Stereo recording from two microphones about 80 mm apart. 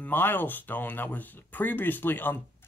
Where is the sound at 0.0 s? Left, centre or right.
Left.